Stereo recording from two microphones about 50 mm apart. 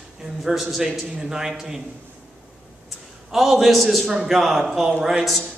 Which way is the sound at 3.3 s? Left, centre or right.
Centre.